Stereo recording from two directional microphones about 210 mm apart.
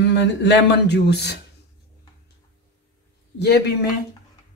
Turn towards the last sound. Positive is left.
turn(degrees=50)  # may be behind; listen again after turning